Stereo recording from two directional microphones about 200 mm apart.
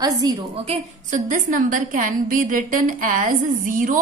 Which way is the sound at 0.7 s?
40° right (ahead or behind).